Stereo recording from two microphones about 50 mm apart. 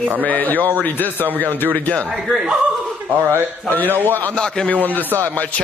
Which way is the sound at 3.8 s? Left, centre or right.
Right.